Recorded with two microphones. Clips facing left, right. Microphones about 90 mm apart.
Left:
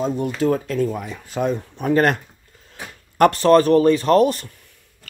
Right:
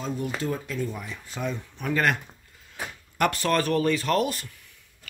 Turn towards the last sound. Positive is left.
turn(degrees=35)  # may be behind; listen again after turning